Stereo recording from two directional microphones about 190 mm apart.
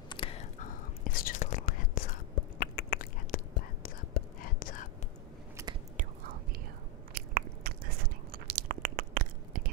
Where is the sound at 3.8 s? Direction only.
50° left (ahead or behind).